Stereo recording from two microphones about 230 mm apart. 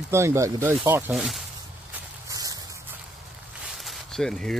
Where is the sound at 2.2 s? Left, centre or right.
Centre.